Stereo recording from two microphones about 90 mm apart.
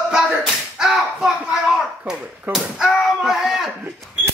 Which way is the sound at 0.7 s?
5° right (ahead or behind).